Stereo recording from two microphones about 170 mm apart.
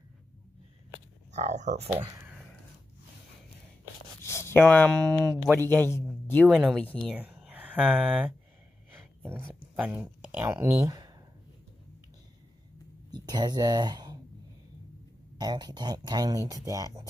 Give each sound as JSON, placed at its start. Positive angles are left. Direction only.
{"t": 1.3, "sound": "speech", "side_deg": -45}
{"t": 4.2, "sound": "speech", "side_deg": 15}
{"t": 6.5, "sound": "speech", "side_deg": 0}
{"t": 7.1, "sound": "speech", "side_deg": -5}
{"t": 9.8, "sound": "speech", "side_deg": -10}
{"t": 13.1, "sound": "speech", "side_deg": -25}
{"t": 15.3, "sound": "speech", "side_deg": -25}